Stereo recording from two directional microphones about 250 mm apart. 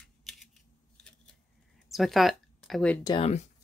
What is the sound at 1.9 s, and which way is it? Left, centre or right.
Speech, centre.